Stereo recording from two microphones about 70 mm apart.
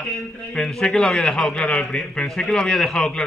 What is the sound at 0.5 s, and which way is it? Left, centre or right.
A man's voice, centre.